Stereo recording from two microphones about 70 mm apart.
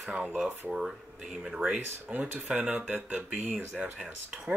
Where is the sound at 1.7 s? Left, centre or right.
Right.